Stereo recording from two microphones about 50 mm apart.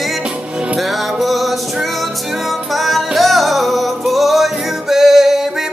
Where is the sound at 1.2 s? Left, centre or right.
Centre.